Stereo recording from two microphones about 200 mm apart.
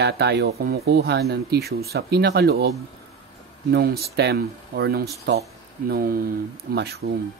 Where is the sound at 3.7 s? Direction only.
55° right (ahead or behind).